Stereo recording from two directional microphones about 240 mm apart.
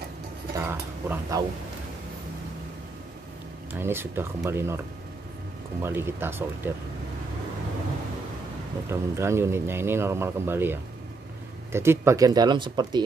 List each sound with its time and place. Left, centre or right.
0.6 s speech: centre
3.8 s a man's voice: centre
8.8 s a man's voice: centre